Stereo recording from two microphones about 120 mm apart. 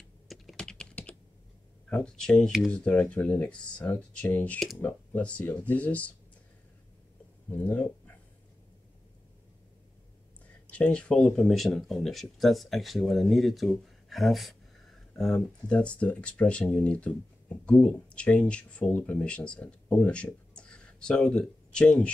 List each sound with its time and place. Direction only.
0.3 s typing: 5° left (ahead or behind)
1.9 s speech: 5° left (ahead or behind)
7.4 s speech: 15° left (ahead or behind)
10.4 s speech: 10° left (ahead or behind)